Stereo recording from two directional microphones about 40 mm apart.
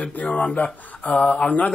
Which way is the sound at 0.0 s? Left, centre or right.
Left.